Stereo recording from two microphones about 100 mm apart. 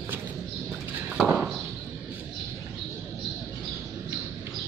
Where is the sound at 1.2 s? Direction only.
15° right (ahead or behind).